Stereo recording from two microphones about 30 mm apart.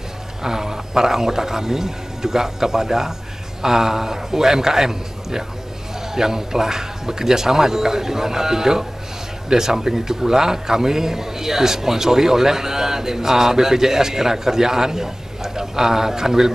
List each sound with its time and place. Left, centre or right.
0.4 s a man's voice: centre